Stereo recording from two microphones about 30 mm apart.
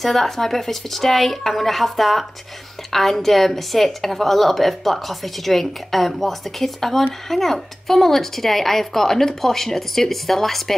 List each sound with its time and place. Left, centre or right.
0.0 s a woman's voice: centre